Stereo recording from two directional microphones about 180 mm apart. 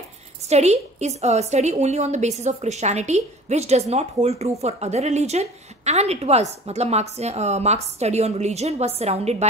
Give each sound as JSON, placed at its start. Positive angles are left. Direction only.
{"t": 0.5, "sound": "a woman's voice", "side_deg": -35}